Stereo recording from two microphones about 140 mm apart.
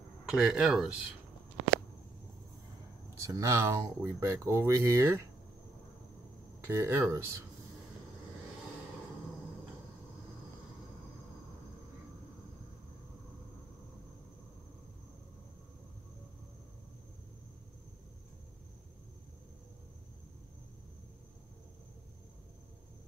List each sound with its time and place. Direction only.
0.3 s speech: 5° right (ahead or behind)
3.2 s speech: 25° right (ahead or behind)
6.6 s speech: 20° right (ahead or behind)